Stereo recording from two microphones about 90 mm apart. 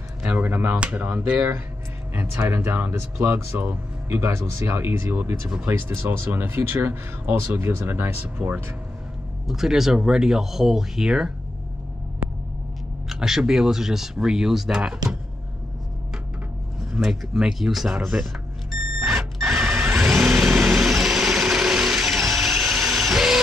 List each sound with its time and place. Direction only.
0.2 s speech: 20° right (ahead or behind)
8.4 s speech: 5° right (ahead or behind)
13.1 s speech: 5° right (ahead or behind)
16.9 s speech: 5° right (ahead or behind)
19.5 s a sound: 5° right (ahead or behind)
20.0 s vehicle: 5° right (ahead or behind)